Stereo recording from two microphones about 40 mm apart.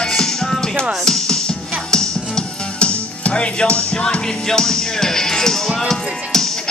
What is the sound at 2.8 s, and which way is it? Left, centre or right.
Music, left.